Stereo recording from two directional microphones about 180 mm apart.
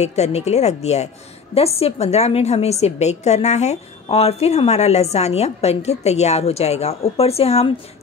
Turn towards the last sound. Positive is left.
turn(degrees=35)  # may be behind; listen again after turning